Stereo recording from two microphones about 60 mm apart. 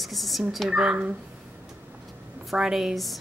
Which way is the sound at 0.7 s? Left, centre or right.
Centre.